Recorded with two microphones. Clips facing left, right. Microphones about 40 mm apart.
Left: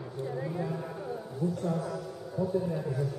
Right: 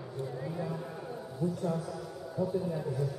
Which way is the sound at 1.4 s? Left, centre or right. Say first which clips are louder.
Left 1 dB; centre.